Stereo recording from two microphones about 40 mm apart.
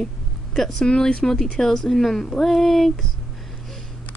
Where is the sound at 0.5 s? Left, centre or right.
Centre.